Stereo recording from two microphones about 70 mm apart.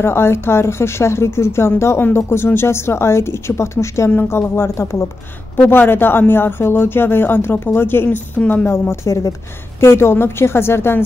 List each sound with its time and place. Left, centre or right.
0.0 s speech: left
4.1 s speech: left